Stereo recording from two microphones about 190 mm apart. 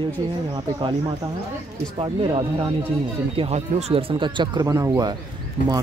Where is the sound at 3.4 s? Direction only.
35° right (ahead or behind).